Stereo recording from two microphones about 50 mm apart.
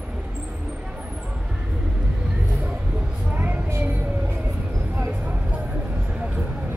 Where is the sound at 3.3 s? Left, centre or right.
Right.